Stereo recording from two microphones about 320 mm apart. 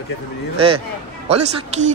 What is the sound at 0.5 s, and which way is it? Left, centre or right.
Speech, centre.